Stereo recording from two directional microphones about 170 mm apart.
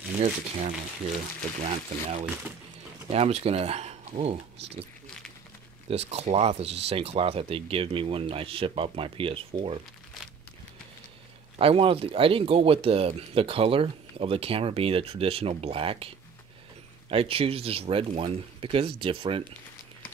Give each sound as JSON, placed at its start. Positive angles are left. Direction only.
{"t": 0.2, "sound": "speech", "side_deg": -40}
{"t": 5.9, "sound": "speech", "side_deg": -35}
{"t": 11.5, "sound": "speech", "side_deg": -35}